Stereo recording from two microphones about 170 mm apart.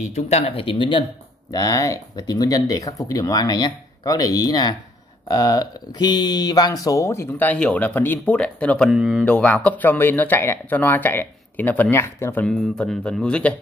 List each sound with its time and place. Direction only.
0.1 s speech: 35° left (ahead or behind); by 9.2 s 5° right (ahead or behind)
9.2 s speech: 10° left (ahead or behind)